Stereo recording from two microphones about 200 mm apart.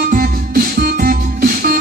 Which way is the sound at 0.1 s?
45° right (ahead or behind).